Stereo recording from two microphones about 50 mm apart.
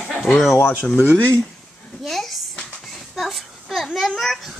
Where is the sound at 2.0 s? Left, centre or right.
Centre.